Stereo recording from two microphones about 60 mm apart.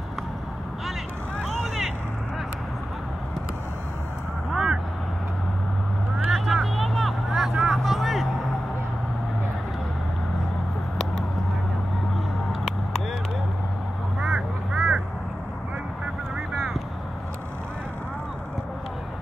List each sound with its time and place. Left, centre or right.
1.4 s vehicle: centre
4.5 s vehicle: centre
6.1 s vehicle: centre
14.2 s quack: centre